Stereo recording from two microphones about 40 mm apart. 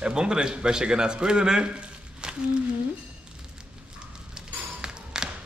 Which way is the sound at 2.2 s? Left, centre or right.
Right.